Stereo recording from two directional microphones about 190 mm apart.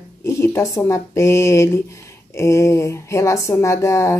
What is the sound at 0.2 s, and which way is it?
Speech, 15° left (ahead or behind).